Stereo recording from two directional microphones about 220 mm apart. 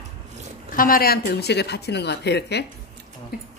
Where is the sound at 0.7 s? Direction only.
40° left (ahead or behind).